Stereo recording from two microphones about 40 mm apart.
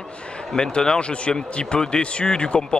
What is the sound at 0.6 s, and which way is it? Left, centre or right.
Speech, left.